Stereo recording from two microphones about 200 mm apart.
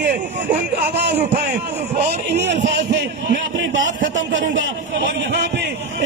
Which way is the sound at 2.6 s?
40° right (ahead or behind).